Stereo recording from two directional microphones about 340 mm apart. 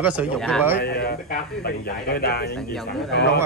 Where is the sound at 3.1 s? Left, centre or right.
Left.